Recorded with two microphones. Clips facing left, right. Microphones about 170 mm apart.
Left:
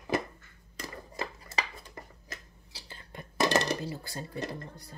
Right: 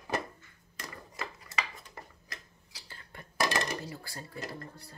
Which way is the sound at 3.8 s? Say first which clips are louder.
Left 5 dB; 20° left (ahead or behind).